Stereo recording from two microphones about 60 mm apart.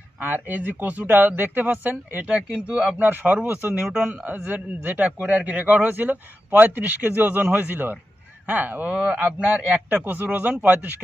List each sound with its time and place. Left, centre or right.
0.2 s speech: right
3.1 s speech: right
3.9 s a man's voice: centre
8.9 s speech: centre
9.8 s a man's voice: right